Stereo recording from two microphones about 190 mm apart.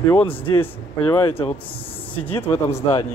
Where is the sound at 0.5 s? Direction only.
15° left (ahead or behind).